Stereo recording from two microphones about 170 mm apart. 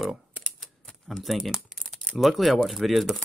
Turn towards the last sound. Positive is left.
turn(degrees=0)  # may be behind; listen again after turning